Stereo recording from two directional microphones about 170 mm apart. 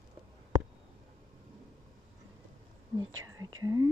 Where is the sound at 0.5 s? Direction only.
20° right (ahead or behind).